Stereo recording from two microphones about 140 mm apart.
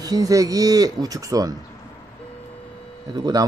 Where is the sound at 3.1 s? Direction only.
30° right (ahead or behind).